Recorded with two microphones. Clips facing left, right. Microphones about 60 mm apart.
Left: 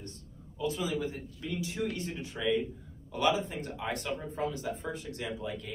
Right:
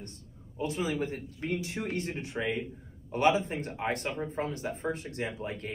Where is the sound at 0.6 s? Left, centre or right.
Right.